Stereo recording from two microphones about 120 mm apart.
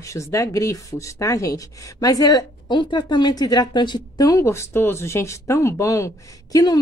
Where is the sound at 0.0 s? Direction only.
25° left (ahead or behind).